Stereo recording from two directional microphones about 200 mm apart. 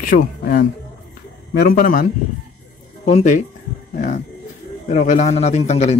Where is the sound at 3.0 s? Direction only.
35° left (ahead or behind).